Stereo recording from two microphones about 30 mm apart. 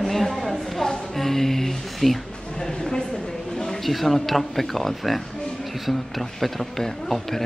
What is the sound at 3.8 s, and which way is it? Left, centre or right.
Speech, centre.